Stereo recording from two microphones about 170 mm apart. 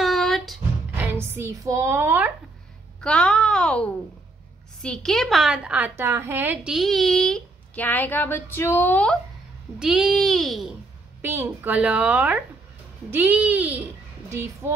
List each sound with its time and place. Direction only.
0.0 s music: centre (ahead or behind)
0.9 s speech: 10° right (ahead or behind)
3.0 s a child's voice: 5° left (ahead or behind)
11.1 s a woman's voice: 15° right (ahead or behind)